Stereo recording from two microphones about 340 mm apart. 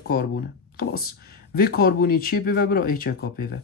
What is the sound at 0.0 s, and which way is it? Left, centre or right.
A woman's voice, left.